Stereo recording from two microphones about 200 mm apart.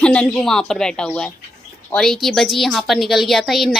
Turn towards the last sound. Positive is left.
turn(degrees=0)  # may be behind; listen again after turning